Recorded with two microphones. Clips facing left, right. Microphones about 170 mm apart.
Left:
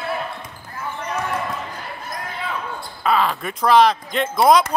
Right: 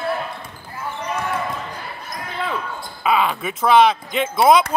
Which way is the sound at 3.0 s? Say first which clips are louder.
Even; 5° right (ahead or behind).